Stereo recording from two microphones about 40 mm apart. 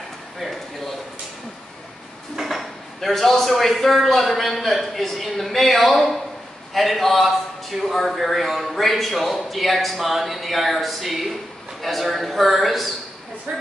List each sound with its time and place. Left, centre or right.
2.3 s speech: centre
13.5 s speech: right